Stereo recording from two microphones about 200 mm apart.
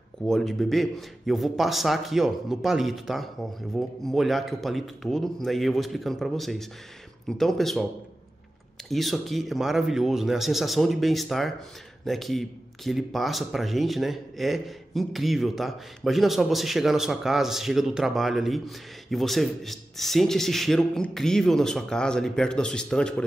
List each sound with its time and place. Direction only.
0.2 s speech: centre (ahead or behind)
8.8 s speech: centre (ahead or behind)